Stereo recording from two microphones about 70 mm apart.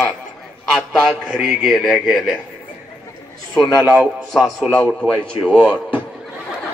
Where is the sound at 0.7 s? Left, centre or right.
Centre.